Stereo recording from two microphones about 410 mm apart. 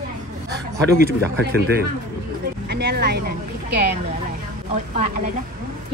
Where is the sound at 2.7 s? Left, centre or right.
Right.